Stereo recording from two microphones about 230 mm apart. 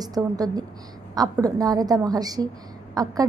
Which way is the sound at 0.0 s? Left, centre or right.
Centre.